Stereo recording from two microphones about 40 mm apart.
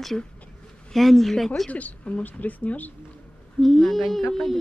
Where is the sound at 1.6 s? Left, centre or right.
Left.